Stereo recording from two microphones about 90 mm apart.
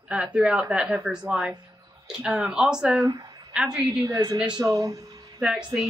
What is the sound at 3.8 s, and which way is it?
Speech, 40° right (ahead or behind).